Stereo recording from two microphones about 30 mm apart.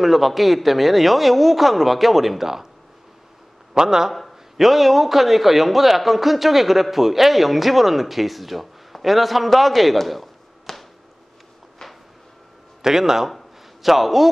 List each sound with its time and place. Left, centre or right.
0.0 s a man's voice: centre
3.7 s a man's voice: centre
4.1 s a sound: centre
4.6 s a man's voice: centre
10.7 s a sound: centre
12.8 s a man's voice: centre